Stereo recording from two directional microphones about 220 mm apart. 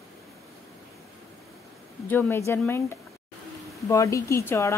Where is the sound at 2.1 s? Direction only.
10° left (ahead or behind).